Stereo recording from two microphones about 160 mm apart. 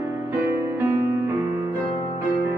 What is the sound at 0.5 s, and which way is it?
Music, 15° right (ahead or behind).